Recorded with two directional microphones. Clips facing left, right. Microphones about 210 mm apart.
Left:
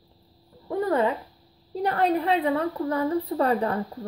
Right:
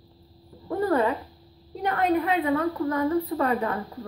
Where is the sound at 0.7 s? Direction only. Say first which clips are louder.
Even; 25° left (ahead or behind).